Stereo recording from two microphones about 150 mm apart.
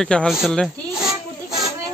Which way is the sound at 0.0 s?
5° left (ahead or behind).